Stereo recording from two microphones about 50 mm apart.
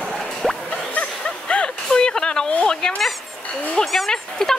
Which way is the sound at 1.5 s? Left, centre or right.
Centre.